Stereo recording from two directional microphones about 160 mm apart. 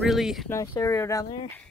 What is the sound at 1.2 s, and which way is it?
Speech, 30° left (ahead or behind).